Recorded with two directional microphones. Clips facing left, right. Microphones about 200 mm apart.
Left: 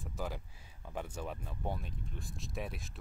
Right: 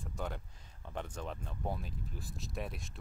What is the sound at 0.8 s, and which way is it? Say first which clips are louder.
Speech: left 1 dB; 5° left (ahead or behind).